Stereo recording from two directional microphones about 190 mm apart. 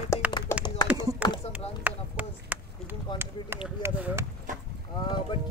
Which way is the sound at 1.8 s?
10° right (ahead or behind).